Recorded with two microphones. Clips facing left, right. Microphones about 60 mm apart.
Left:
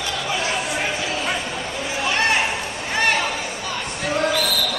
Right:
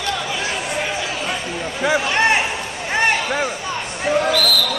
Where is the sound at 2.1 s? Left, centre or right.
Right.